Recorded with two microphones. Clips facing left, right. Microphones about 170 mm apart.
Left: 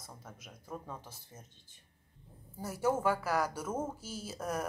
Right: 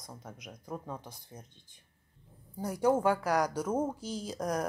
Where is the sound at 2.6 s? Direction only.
15° right (ahead or behind).